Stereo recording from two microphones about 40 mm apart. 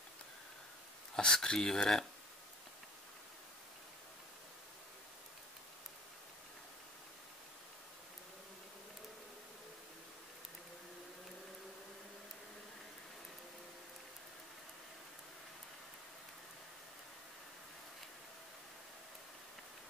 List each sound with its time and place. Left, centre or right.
1.1 s speech: centre